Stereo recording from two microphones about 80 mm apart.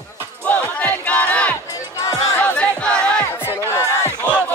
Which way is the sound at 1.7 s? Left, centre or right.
Left.